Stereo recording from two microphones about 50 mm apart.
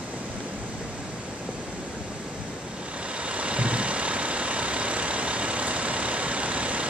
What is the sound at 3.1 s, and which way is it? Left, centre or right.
Vehicle, right.